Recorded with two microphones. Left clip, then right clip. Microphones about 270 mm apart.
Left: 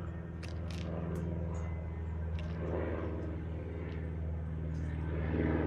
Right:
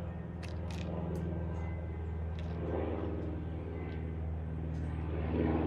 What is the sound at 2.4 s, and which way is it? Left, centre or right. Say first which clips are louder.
Vehicle: right 1 dB; centre.